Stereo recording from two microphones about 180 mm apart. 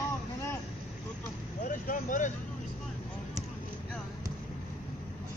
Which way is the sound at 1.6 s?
45° left (ahead or behind).